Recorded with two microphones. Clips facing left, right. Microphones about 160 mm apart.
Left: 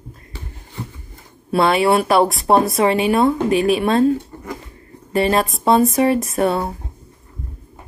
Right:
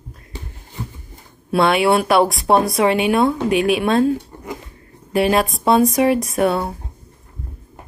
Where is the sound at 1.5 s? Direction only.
Centre (ahead or behind).